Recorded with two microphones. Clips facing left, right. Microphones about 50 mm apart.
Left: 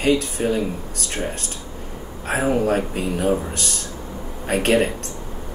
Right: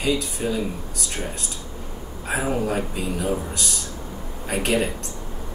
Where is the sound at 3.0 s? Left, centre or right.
Left.